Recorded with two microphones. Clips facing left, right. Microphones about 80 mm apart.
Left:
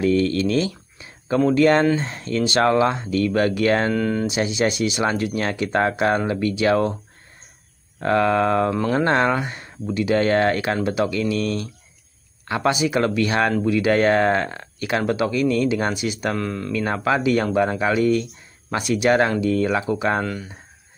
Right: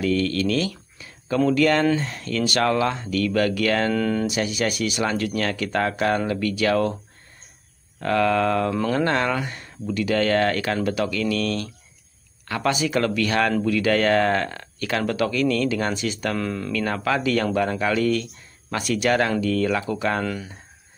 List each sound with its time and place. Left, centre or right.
0.0 s speech: left
3.9 s speech: centre
4.3 s speech: left
8.0 s speech: left
16.3 s speech: centre
16.7 s speech: left
20.2 s speech: centre